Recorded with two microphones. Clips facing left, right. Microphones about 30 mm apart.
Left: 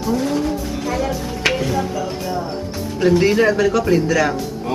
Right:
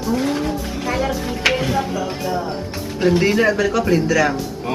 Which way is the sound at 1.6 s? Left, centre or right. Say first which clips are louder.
Even; centre.